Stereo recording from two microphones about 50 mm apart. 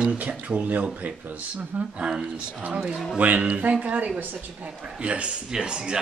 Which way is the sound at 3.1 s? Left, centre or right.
Right.